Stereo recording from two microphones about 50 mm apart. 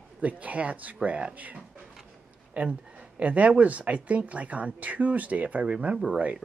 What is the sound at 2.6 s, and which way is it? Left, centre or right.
Speech, right.